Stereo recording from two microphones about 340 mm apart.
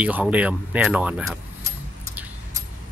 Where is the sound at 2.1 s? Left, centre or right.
Centre.